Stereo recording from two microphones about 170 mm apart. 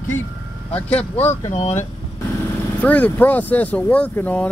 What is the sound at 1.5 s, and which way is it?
Speech, 45° left (ahead or behind).